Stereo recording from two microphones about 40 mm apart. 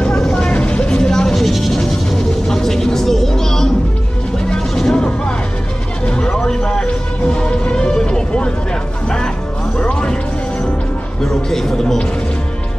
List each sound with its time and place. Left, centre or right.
0.1 s vehicle: centre
0.4 s vehicle: left
1.3 s music: centre
6.0 s vehicle: left
6.3 s a sound: centre
6.9 s music: left
9.8 s music: left
11.2 s a sound: centre